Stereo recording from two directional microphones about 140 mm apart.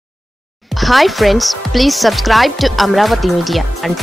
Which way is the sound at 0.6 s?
Centre (ahead or behind).